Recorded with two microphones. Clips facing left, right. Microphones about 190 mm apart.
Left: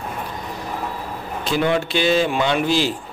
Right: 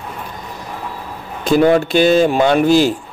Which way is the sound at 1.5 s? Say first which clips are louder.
Right 8 dB; 45° right (ahead or behind).